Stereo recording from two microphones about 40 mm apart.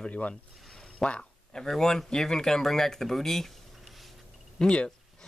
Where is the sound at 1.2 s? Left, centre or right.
Centre.